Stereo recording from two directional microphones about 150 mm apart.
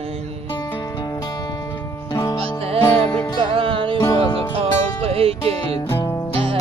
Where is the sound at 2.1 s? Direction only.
25° left (ahead or behind).